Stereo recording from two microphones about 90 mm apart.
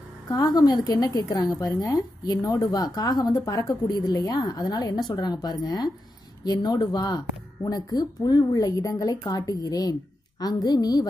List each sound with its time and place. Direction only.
0.3 s a woman's voice: 45° left (ahead or behind)